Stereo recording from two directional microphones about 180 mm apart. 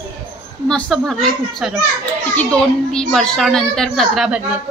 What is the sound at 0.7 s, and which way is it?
A woman's voice, 5° left (ahead or behind).